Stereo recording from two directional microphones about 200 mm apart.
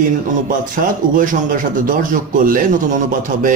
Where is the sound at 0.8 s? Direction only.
40° right (ahead or behind).